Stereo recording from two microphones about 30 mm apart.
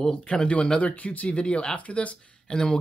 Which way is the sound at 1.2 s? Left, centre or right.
Left.